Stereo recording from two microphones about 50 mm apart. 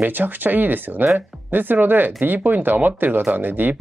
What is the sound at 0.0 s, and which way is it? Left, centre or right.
Speech, right.